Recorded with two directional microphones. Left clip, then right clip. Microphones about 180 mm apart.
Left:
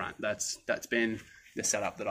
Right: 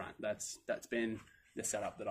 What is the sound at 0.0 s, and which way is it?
Speech, 20° left (ahead or behind).